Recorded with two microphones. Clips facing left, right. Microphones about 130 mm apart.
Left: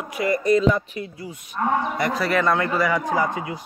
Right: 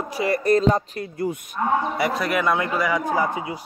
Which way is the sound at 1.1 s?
50° right (ahead or behind).